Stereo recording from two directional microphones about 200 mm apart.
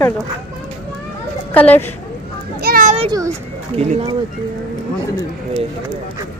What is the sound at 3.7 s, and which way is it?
Speech, 30° right (ahead or behind).